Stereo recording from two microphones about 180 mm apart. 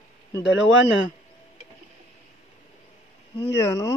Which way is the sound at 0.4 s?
90° left.